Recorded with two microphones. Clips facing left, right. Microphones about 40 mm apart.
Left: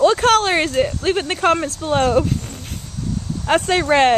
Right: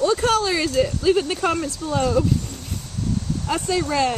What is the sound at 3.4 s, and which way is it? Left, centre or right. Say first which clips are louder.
Speech: left 8 dB; left.